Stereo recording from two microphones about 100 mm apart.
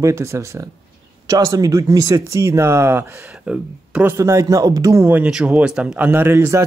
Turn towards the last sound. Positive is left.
turn(degrees=-25)  # may be behind; listen again after turning